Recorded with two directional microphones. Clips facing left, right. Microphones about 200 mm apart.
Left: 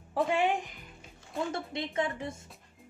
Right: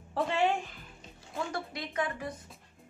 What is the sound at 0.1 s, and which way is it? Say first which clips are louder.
Speech: left 1 dB; 15° left (ahead or behind).